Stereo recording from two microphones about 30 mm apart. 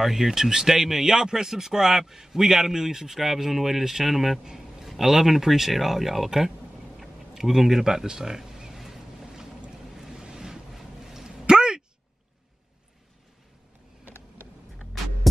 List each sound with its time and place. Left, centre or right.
0.0 s speech: centre
3.1 s speech: centre
8.7 s boat: centre
10.1 s ocean: right
10.7 s vehicle: centre
11.4 s a sound: right